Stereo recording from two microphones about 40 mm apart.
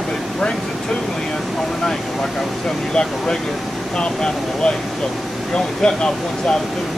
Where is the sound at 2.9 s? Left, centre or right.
Left.